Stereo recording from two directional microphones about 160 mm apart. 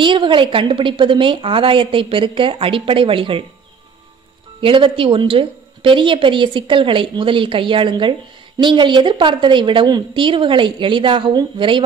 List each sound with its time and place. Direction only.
0.0 s a woman's voice: 30° right (ahead or behind)
4.6 s a woman's voice: 30° right (ahead or behind)